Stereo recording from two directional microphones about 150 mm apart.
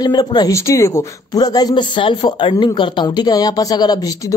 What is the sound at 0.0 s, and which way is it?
Speech, 25° left (ahead or behind).